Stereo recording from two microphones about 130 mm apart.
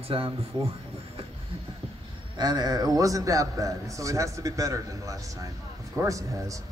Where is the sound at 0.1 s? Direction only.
45° right (ahead or behind).